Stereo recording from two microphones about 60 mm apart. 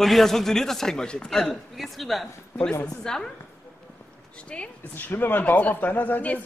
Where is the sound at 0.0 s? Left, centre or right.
Centre.